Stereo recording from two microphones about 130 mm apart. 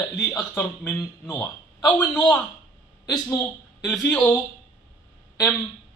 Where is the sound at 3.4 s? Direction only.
Centre (ahead or behind).